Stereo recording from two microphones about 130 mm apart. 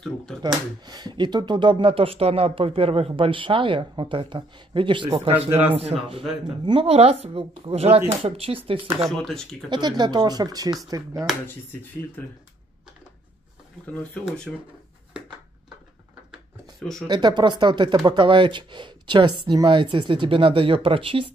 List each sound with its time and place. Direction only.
0.4 s speech: 35° right (ahead or behind); by 8.5 s 50° right (ahead or behind)
9.1 s speech: 5° left (ahead or behind)
9.7 s speech: 35° right (ahead or behind)
12.2 s speech: 15° left (ahead or behind)
14.5 s speech: centre (ahead or behind)
17.1 s speech: 35° right (ahead or behind)